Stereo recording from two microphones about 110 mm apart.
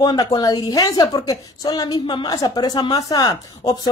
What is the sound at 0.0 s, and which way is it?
A woman's voice, 35° left (ahead or behind).